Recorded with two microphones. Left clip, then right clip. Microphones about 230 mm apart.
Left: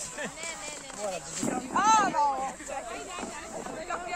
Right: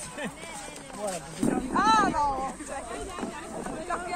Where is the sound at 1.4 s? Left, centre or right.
Centre.